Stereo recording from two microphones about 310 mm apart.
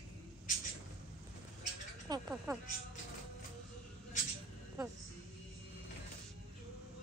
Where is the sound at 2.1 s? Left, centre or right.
Centre.